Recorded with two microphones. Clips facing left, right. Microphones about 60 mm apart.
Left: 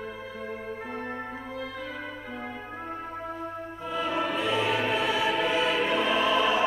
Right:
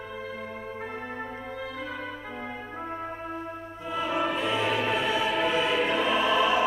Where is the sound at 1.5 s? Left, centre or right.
Centre.